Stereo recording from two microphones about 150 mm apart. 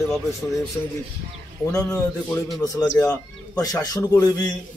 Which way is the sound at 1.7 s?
20° left (ahead or behind).